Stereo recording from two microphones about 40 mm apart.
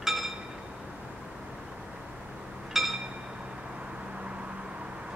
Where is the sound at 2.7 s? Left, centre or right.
Centre.